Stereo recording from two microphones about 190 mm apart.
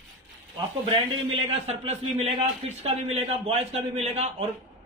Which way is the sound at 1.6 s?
35° right (ahead or behind).